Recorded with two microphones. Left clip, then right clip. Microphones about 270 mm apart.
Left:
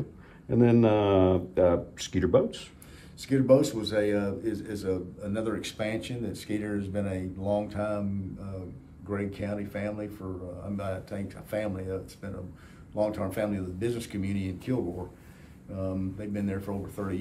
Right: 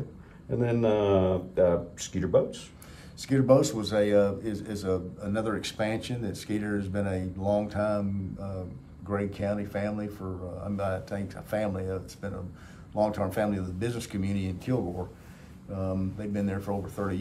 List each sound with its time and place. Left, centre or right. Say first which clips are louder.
0.5 s speech: left 3 dB; left
3.2 s speech: even; centre
9.1 s speech: right 3 dB; centre